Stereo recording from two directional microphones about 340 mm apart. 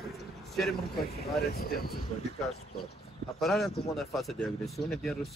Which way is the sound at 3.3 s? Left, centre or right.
Centre.